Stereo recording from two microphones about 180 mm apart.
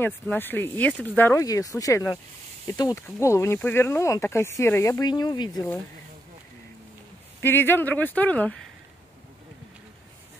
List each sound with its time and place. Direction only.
0.0 s speech: 10° left (ahead or behind)
7.4 s speech: 10° left (ahead or behind)